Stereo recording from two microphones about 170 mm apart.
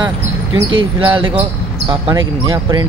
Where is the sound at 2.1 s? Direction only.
20° right (ahead or behind).